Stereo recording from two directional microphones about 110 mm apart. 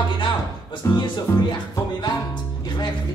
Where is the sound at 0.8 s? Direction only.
30° left (ahead or behind).